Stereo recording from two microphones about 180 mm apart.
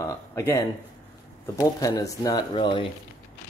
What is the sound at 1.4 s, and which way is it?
Speech, 20° left (ahead or behind).